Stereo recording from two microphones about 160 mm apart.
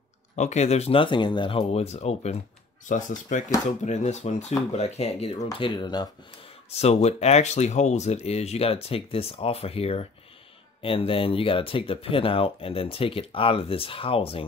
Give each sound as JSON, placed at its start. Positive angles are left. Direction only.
{"t": 0.4, "sound": "speech", "side_deg": 45}
{"t": 6.7, "sound": "speech", "side_deg": 40}